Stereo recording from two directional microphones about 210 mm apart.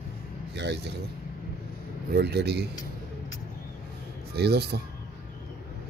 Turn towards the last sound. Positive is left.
turn(degrees=-50)  # may be behind; listen again after turning